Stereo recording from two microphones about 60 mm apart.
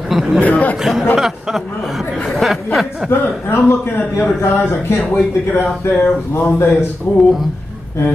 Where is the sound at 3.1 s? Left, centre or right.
Left.